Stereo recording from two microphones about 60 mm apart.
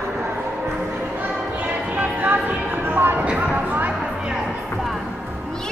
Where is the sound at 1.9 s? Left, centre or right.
Right.